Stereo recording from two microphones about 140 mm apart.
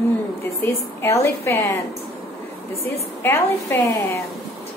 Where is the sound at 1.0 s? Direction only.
20° left (ahead or behind).